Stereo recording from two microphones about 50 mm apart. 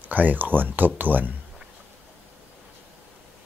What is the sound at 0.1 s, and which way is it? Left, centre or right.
Speech, right.